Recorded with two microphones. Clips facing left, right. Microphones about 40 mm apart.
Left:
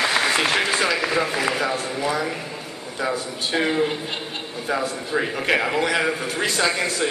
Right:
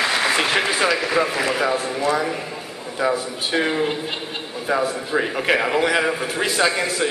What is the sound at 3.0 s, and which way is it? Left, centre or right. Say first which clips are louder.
A man's voice: right 4 dB; centre.